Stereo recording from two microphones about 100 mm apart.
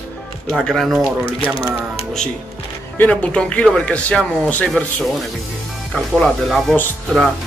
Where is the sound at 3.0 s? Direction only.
15° left (ahead or behind).